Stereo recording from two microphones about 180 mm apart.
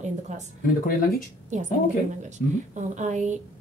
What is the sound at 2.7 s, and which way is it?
Speech, 40° right (ahead or behind).